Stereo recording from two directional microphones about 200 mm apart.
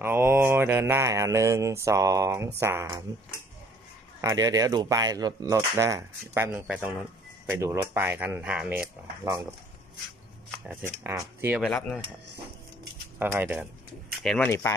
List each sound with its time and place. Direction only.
0.0 s mantra: 10° right (ahead or behind)
4.2 s mantra: 15° right (ahead or behind)
11.1 s mantra: 10° right (ahead or behind)
11.6 s speech: centre (ahead or behind)
13.2 s mantra: 10° right (ahead or behind)
14.2 s speech: centre (ahead or behind)